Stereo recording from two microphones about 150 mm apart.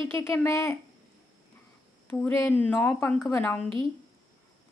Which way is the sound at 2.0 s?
15° left (ahead or behind).